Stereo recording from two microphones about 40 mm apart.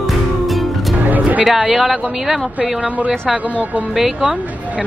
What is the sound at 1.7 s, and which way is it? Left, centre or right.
Speech, centre.